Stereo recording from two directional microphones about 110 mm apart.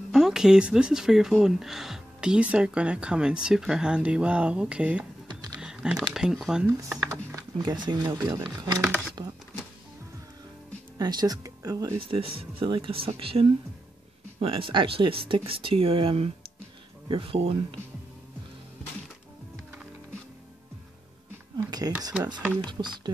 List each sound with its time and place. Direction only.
0.1 s speech: 5° right (ahead or behind)
5.6 s typing: 5° right (ahead or behind)
6.1 s speech: 5° right (ahead or behind)
7.3 s speech: 35° right (ahead or behind)
11.0 s speech: 35° right (ahead or behind)
12.1 s speech: 60° right (ahead or behind)
21.5 s speech: 35° right (ahead or behind)